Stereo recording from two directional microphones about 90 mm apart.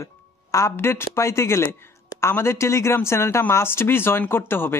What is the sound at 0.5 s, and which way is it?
Speech, 35° left (ahead or behind).